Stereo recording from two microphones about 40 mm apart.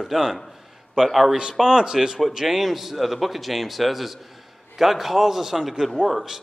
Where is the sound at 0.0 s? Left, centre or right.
Centre.